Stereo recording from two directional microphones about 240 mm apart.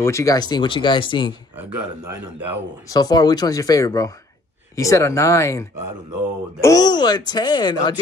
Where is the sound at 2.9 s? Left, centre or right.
Centre.